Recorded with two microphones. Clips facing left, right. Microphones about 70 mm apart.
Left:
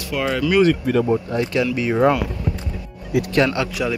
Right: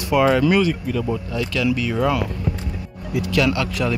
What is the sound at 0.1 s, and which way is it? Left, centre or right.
Speech, centre.